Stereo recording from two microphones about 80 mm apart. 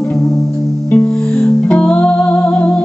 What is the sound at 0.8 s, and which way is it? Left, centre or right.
Music, left.